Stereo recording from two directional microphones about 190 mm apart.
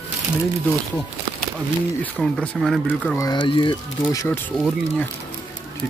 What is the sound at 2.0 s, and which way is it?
Speech, 5° left (ahead or behind).